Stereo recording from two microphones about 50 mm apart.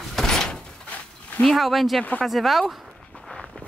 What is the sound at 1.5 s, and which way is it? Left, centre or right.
Speech, centre.